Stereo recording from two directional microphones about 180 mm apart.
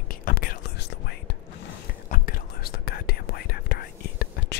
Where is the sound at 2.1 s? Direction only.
55° left (ahead or behind).